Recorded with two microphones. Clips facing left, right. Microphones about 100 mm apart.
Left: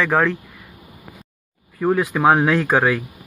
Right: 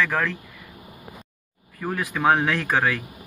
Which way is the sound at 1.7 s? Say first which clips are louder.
Left 9 dB; 15° left (ahead or behind).